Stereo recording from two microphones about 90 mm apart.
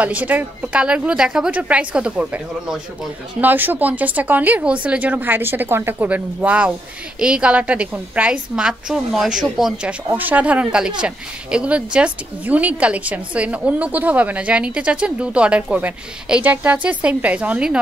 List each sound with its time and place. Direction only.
0.0 s speech: 15° right (ahead or behind)
10.1 s speech: 20° right (ahead or behind)